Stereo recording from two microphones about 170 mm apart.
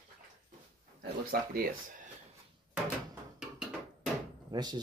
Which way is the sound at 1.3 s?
60° right (ahead or behind).